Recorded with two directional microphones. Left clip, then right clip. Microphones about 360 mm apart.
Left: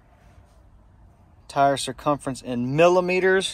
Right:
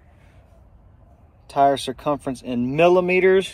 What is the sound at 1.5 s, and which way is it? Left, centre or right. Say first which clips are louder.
Speech: right 3 dB; left.